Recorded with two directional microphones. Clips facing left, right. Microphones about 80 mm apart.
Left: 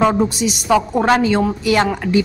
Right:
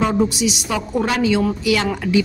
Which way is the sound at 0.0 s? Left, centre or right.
Left.